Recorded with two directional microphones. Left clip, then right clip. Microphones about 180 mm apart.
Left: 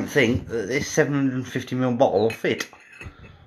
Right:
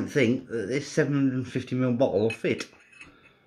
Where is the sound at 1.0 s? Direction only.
20° right (ahead or behind).